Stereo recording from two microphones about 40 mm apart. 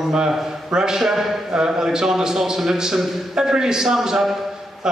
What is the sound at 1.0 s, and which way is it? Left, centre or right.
A man's voice, centre.